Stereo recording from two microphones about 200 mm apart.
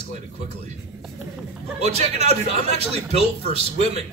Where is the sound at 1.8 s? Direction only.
35° right (ahead or behind).